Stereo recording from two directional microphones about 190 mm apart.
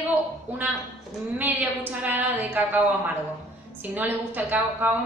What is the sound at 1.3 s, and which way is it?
Speech, 10° right (ahead or behind).